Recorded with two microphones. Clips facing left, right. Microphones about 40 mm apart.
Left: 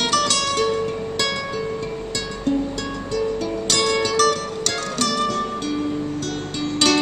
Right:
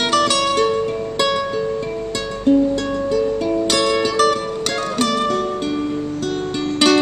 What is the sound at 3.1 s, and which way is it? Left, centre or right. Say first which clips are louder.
Music: right 4 dB; centre.